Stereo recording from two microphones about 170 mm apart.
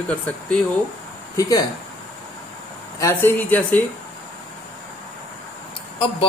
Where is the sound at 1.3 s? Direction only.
20° left (ahead or behind).